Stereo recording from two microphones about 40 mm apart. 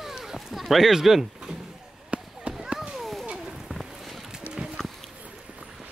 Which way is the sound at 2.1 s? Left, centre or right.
Right.